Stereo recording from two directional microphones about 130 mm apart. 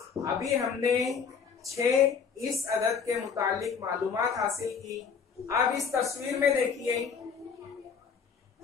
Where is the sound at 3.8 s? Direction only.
25° right (ahead or behind).